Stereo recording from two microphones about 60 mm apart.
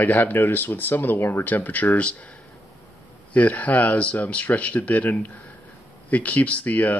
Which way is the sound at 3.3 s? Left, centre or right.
Left.